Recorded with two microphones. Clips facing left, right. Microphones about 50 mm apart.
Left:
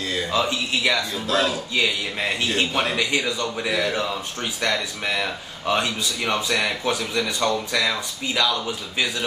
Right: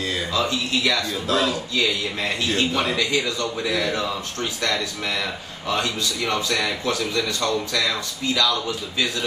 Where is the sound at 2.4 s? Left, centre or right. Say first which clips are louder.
Right 1 dB; left.